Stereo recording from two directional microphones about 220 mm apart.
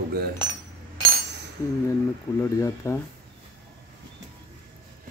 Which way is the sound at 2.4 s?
10° left (ahead or behind).